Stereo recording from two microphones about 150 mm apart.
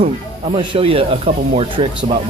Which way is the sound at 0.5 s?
40° right (ahead or behind).